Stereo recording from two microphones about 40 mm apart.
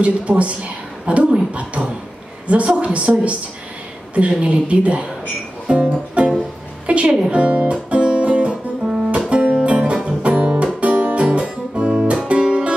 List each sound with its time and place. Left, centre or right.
0.0 s a woman's voice: right
4.4 s speech: right
5.7 s music: right
6.9 s speech: right
7.9 s music: right
8.8 s music: centre
9.3 s music: right
11.2 s guitar: right
12.0 s music: right